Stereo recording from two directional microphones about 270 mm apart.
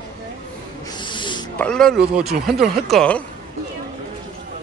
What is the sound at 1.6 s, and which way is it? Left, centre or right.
Speech, centre.